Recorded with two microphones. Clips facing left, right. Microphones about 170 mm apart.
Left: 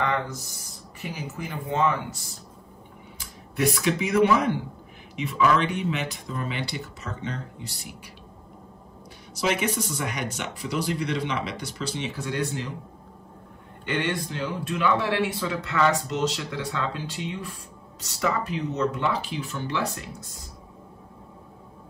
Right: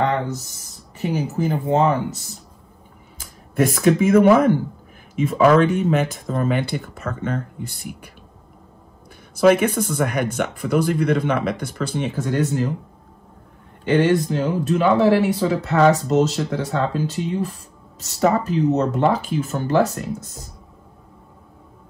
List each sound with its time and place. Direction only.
1.1 s speech: 40° right (ahead or behind)
3.2 s speech: 45° right (ahead or behind)
9.3 s speech: 55° right (ahead or behind)
13.8 s speech: 40° right (ahead or behind)